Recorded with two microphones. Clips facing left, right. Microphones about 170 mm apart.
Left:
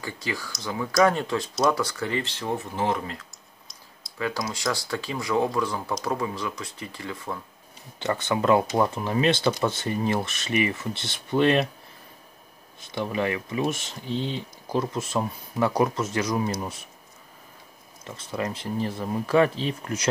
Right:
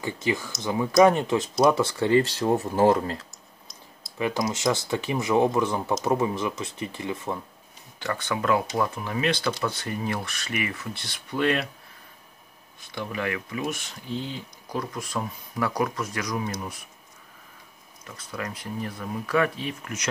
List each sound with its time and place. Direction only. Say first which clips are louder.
0.0 s speech: right 5 dB; 20° right (ahead or behind); by 3.3 s 35° right (ahead or behind)
4.2 s speech: right 3 dB; 20° right (ahead or behind)
8.0 s speech: left 3 dB; 20° left (ahead or behind)
12.9 s speech: left 3 dB; 25° left (ahead or behind)
18.0 s speech: left 5 dB; 25° left (ahead or behind)